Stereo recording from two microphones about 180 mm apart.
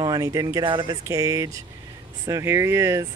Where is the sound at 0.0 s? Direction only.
20° right (ahead or behind).